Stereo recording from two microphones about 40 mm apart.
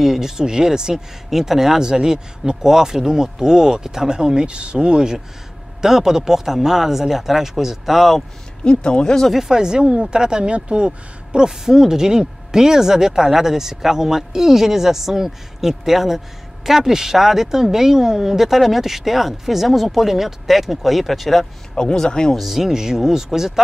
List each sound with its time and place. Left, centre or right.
0.0 s speech: centre
0.4 s speech: centre
8.6 s speech: left
9.3 s speech: centre
21.7 s speech: centre
22.3 s speech: centre